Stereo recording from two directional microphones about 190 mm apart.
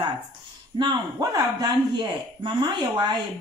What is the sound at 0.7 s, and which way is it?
A woman's voice, 25° right (ahead or behind).